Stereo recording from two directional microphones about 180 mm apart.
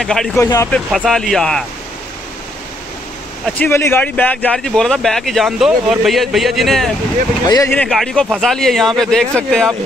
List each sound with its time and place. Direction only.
0.0 s speech: centre (ahead or behind)
0.4 s speech: 15° left (ahead or behind)
0.7 s speech: 5° left (ahead or behind)
3.4 s speech: 10° left (ahead or behind)
7.4 s speech: 20° left (ahead or behind)
7.7 s speech: 5° left (ahead or behind)